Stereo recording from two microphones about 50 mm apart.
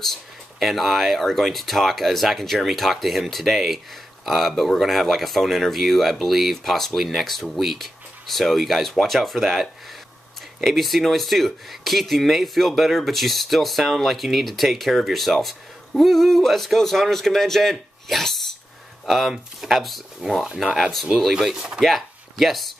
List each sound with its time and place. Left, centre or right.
0.0 s speech: centre
10.7 s speech: centre
20.4 s speech: centre
21.2 s speech: centre